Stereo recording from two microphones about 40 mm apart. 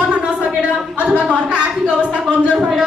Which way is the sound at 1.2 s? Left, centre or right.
Right.